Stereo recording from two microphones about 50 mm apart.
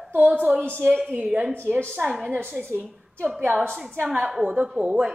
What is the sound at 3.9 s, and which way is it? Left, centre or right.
Speech, right.